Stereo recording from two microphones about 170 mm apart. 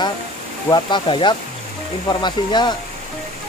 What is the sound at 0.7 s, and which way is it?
Speech, 30° left (ahead or behind).